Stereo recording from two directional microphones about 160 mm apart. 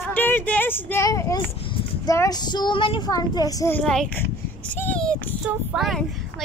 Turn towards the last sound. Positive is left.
turn(degrees=0)  # may be behind; listen again after turning